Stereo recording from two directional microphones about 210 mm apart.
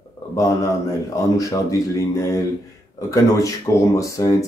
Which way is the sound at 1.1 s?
15° left (ahead or behind).